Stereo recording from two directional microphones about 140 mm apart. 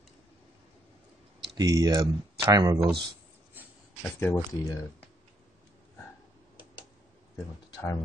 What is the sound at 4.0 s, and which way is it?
Speech, 15° left (ahead or behind).